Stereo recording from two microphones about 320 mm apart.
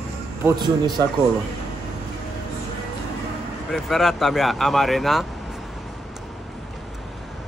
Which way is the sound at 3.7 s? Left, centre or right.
Centre.